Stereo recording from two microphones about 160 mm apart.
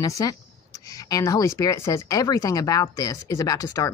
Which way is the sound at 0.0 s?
20° left (ahead or behind).